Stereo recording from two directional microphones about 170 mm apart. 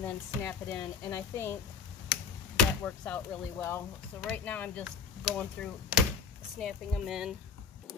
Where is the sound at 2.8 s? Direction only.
10° left (ahead or behind).